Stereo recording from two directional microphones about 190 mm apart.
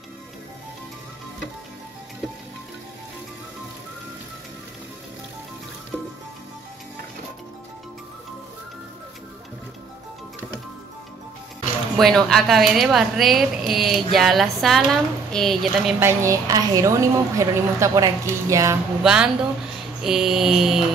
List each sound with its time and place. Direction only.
12.0 s a woman's voice: centre (ahead or behind)
16.0 s a woman's voice: 15° right (ahead or behind)
19.0 s a woman's voice: 5° right (ahead or behind)